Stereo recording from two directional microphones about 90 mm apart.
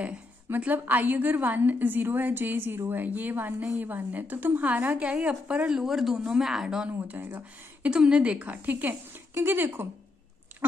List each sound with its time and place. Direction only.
0.0 s a woman's voice: 15° right (ahead or behind)
7.0 s a woman's voice: 20° right (ahead or behind)
7.9 s a woman's voice: 10° right (ahead or behind)